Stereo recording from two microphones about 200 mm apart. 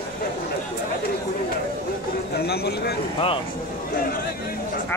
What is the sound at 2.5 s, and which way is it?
Speech, 50° left (ahead or behind).